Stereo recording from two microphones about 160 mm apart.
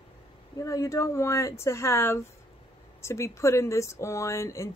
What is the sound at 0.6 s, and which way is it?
Speech, 20° left (ahead or behind).